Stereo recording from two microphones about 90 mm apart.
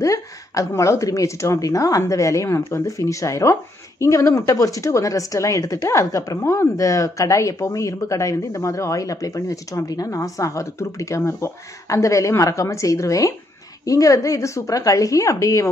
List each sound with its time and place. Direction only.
0.0 s a woman's voice: 35° left (ahead or behind)